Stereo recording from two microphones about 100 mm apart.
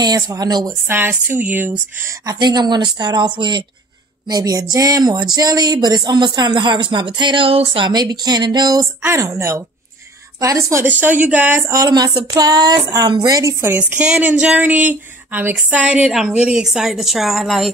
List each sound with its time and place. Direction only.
0.0 s speech: 40° right (ahead or behind)
0.8 s speech: 20° right (ahead or behind)
2.3 s speech: 45° right (ahead or behind)
4.3 s speech: 40° right (ahead or behind)
9.0 s speech: 25° right (ahead or behind)
10.9 s speech: 15° right (ahead or behind); by 13.7 s 35° right (ahead or behind)
13.7 s a woman's voice: 20° right (ahead or behind); by 17.6 s centre (ahead or behind)